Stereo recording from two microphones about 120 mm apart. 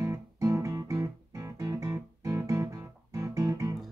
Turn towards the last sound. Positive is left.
turn(degrees=-25)  # may be behind; listen again after turning